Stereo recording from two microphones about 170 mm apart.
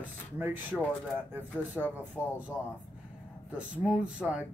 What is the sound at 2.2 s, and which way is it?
Speech, 15° left (ahead or behind).